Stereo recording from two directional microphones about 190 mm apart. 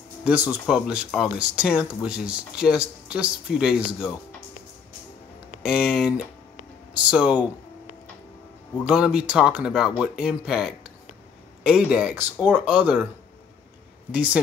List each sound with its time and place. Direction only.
0.2 s speech: 10° right (ahead or behind)
5.6 s speech: 5° right (ahead or behind)
8.8 s speech: 5° right (ahead or behind)
14.1 s speech: 5° right (ahead or behind)